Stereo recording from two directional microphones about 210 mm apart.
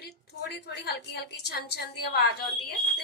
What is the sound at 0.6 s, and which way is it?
A woman's voice, 50° left (ahead or behind).